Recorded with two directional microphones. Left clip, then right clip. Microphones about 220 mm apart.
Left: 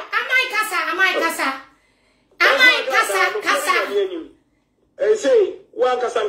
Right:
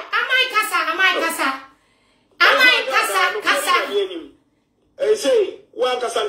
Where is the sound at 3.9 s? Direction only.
15° left (ahead or behind).